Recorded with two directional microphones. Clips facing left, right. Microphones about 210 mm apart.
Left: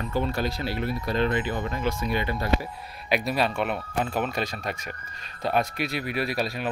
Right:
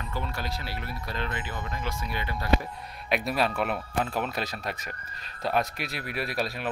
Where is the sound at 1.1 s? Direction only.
25° left (ahead or behind).